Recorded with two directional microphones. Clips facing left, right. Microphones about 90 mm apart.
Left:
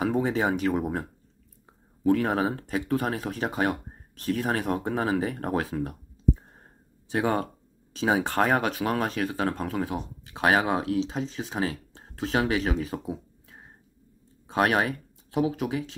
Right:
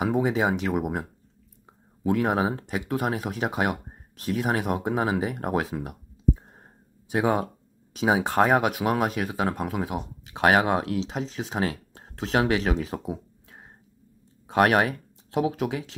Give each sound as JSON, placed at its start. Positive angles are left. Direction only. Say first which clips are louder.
{"t": 0.0, "sound": "speech", "louder": "right 1 dB", "side_deg": -15}
{"t": 2.0, "sound": "speech", "louder": "even", "side_deg": -15}